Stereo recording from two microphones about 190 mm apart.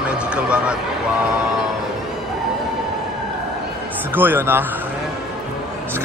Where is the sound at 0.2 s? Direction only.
5° right (ahead or behind).